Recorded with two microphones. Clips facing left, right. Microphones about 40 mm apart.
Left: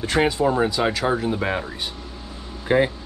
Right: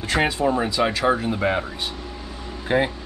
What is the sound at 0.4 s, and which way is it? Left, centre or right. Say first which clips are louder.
Speech: left 1 dB; centre.